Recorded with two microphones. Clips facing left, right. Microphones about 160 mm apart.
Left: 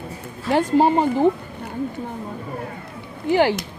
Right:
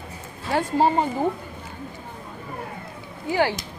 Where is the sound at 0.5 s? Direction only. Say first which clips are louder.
Left 4 dB; 15° left (ahead or behind).